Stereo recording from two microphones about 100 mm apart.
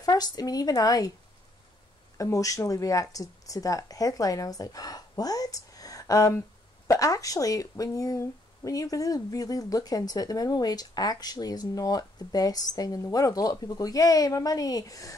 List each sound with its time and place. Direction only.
0.0 s speech: 40° left (ahead or behind)
2.1 s speech: 35° left (ahead or behind)